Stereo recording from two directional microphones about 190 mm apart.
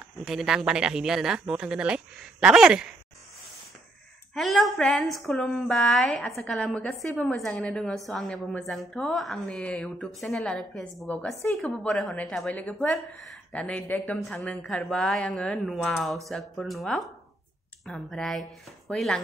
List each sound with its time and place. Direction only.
0.2 s a woman's voice: centre (ahead or behind)
4.3 s a woman's voice: centre (ahead or behind)